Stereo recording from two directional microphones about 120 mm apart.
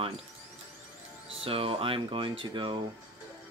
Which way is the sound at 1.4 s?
50° right (ahead or behind).